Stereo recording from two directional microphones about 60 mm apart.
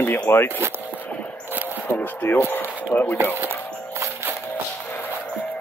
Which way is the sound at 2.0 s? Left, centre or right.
Left.